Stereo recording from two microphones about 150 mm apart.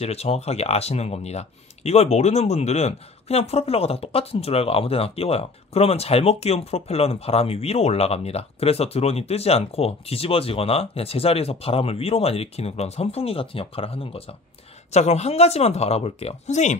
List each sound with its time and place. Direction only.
0.0 s speech: 45° left (ahead or behind)